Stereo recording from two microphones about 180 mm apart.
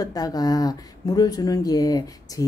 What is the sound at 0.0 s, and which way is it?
A woman's voice, 20° left (ahead or behind).